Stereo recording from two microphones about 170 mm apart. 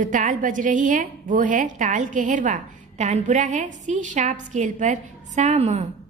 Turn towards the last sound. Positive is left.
turn(degrees=-40)  # may be behind; listen again after turning